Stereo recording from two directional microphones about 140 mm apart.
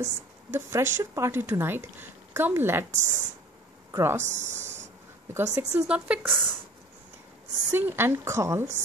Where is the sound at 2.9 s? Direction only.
60° right (ahead or behind).